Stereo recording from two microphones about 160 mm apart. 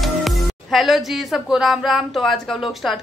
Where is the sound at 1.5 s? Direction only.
Centre (ahead or behind).